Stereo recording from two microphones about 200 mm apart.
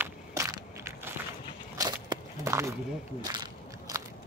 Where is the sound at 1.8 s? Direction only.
15° right (ahead or behind).